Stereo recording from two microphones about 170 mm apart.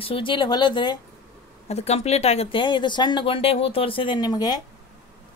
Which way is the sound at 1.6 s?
40° left (ahead or behind).